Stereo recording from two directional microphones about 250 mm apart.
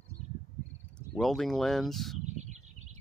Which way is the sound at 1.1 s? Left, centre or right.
Centre.